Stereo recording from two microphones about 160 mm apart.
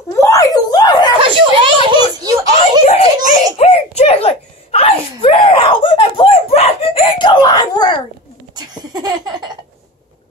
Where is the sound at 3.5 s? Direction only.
40° left (ahead or behind); by 8.0 s 25° left (ahead or behind).